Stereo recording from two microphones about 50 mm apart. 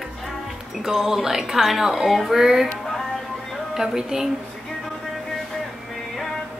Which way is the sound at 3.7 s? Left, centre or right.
Centre.